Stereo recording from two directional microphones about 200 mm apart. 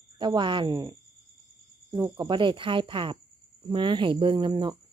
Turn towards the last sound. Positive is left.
turn(degrees=-25)  # may be behind; listen again after turning